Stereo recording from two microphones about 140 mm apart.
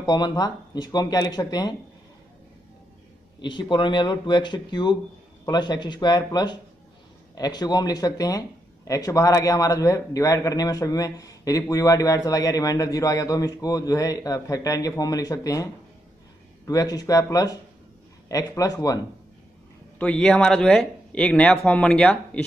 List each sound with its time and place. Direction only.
0.0 s speech: 30° left (ahead or behind)
3.3 s speech: 35° left (ahead or behind)
20.0 s speech: 5° left (ahead or behind)